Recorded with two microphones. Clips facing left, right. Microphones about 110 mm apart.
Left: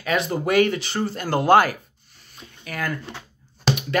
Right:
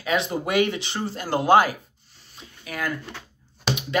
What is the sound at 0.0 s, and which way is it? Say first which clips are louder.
Speech: left 1 dB; 20° right (ahead or behind).